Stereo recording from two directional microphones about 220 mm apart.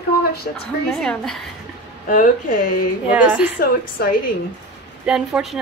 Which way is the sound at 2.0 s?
35° left (ahead or behind).